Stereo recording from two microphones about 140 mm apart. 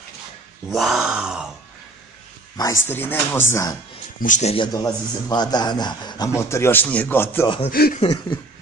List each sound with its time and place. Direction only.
0.7 s grunt: centre (ahead or behind)
2.5 s a man's voice: 20° left (ahead or behind)
4.2 s speech: 60° left (ahead or behind)
4.7 s a man's voice: 30° left (ahead or behind)
7.4 s a man's voice: 35° left (ahead or behind)
7.7 s speech: 90° left